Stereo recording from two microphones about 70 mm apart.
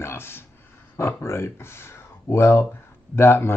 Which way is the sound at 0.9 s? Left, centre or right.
Left.